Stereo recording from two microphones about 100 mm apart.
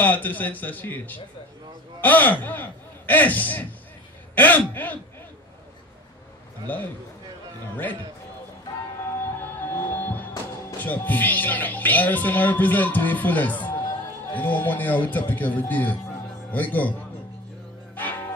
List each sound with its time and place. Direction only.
0.0 s speech: 15° left (ahead or behind)
6.7 s speech: 15° left (ahead or behind)
9.1 s music: 20° left (ahead or behind)
10.8 s speech: 15° left (ahead or behind)
17.9 s music: 20° left (ahead or behind)